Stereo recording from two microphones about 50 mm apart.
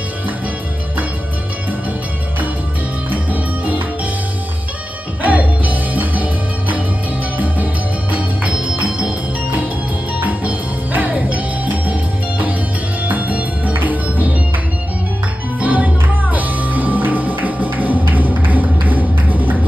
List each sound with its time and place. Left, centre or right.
3.1 s music: right
5.2 s music: right
7.3 s music: right
10.2 s music: right
15.6 s music: right